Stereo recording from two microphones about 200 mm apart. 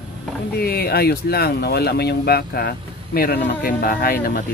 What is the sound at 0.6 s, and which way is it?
Speech, 50° left (ahead or behind).